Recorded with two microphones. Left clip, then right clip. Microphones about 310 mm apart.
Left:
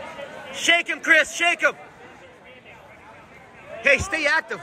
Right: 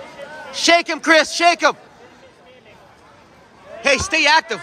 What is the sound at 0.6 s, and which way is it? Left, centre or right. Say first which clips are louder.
Speech: right 4 dB; right.